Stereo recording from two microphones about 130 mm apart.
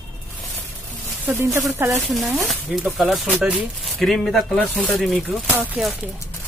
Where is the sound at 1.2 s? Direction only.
20° right (ahead or behind).